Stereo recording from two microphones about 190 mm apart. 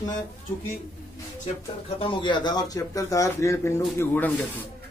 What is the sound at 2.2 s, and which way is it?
Speech, 25° left (ahead or behind).